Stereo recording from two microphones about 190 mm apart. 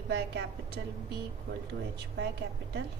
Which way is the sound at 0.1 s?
60° right (ahead or behind).